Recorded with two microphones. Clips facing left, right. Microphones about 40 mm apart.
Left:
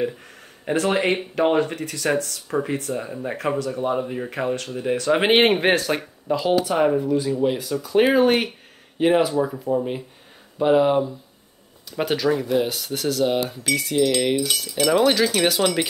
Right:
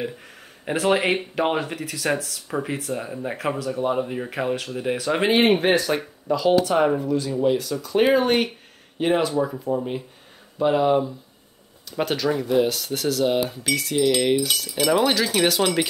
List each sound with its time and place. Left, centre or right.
0.7 s speech: centre
5.3 s speech: left
6.2 s speech: centre
6.8 s speech: centre
7.1 s speech: centre